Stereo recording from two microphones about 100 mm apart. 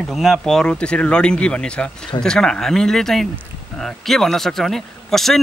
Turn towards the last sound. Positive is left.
turn(degrees=0)  # may be behind; listen again after turning